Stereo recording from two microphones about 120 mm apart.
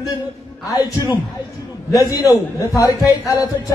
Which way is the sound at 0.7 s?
30° left (ahead or behind).